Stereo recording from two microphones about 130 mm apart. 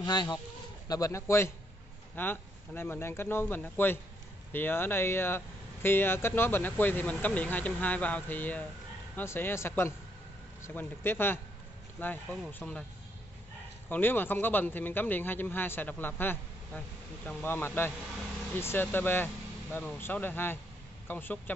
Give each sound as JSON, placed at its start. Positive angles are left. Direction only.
{"t": 0.0, "sound": "speech", "side_deg": 35}
{"t": 13.8, "sound": "speech", "side_deg": 15}